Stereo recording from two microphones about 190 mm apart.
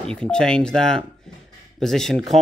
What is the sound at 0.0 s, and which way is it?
Speech, 5° left (ahead or behind).